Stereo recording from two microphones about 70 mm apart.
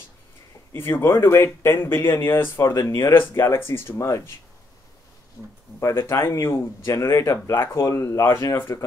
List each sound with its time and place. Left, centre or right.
0.7 s speech: left
5.8 s speech: left